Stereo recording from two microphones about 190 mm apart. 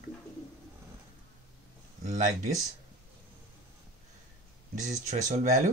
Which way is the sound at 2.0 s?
40° right (ahead or behind).